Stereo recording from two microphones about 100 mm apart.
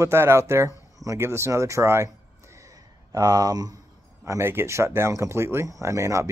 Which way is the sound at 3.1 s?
40° right (ahead or behind).